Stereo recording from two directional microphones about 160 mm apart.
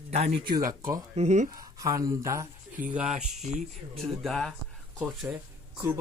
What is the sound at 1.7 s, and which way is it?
Speech, 20° right (ahead or behind).